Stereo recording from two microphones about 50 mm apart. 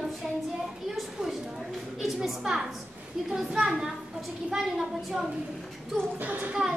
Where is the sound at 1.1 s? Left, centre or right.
Centre.